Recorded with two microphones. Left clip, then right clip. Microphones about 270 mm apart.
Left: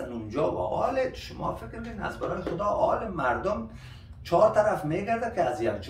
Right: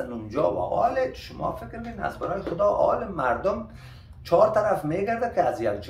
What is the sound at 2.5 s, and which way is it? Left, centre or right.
Speech, centre.